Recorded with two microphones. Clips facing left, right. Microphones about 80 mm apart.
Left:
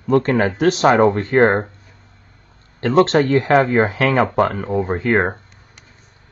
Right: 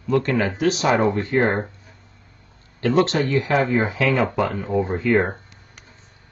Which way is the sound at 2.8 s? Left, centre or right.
Left.